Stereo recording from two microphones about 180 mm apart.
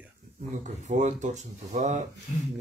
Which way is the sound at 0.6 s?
40° right (ahead or behind).